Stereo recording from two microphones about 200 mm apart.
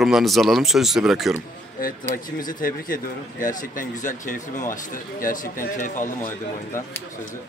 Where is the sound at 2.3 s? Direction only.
45° left (ahead or behind).